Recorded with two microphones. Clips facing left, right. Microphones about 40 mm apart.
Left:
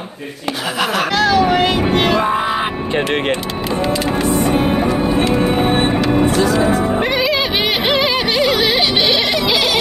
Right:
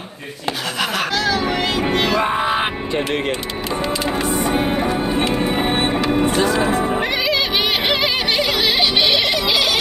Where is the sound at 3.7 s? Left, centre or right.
Centre.